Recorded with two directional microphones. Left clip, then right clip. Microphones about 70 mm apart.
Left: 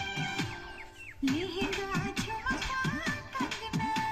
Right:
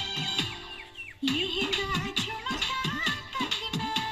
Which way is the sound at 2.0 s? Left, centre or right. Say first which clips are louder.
Right 4 dB; right.